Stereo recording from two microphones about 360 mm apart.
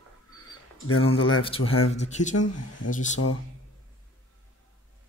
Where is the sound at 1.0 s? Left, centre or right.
Centre.